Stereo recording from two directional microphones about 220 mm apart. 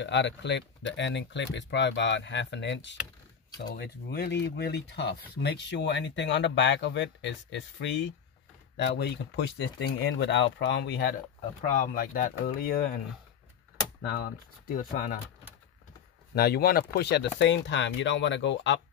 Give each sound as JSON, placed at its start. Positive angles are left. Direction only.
{"t": 0.0, "sound": "speech", "side_deg": 55}
{"t": 14.7, "sound": "speech", "side_deg": 35}
{"t": 16.3, "sound": "speech", "side_deg": 45}